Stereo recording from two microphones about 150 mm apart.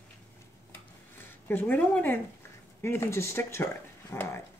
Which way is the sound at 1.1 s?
15° left (ahead or behind).